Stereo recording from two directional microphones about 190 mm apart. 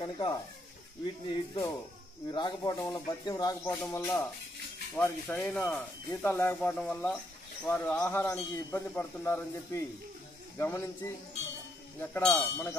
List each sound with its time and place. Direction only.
0.0 s a sound: 25° left (ahead or behind)
1.0 s a man's voice: 25° left (ahead or behind)
12.0 s a man's voice: 10° left (ahead or behind)